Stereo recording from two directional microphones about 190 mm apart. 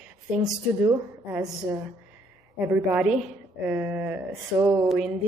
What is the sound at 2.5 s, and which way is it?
A woman's voice, 10° right (ahead or behind).